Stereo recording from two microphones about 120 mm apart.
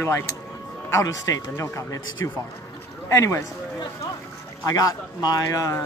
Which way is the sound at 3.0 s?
25° left (ahead or behind).